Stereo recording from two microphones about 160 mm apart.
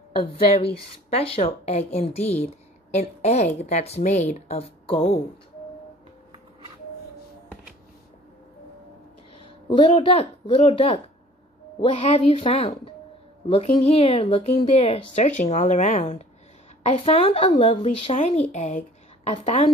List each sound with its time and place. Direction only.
1.1 s a woman's voice: 40° left (ahead or behind)
9.8 s a woman's voice: 35° left (ahead or behind)
18.5 s a sound: 50° left (ahead or behind)
19.4 s a woman's voice: 45° left (ahead or behind)